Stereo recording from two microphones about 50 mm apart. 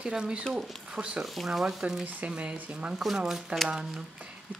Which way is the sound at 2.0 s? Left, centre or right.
Right.